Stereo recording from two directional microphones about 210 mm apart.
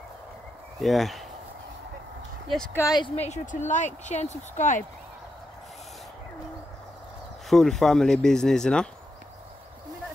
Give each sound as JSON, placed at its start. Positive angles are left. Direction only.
{"t": 0.7, "sound": "speech", "side_deg": 0}
{"t": 2.5, "sound": "speech", "side_deg": 10}
{"t": 3.2, "sound": "speech", "side_deg": 35}
{"t": 7.4, "sound": "speech", "side_deg": 0}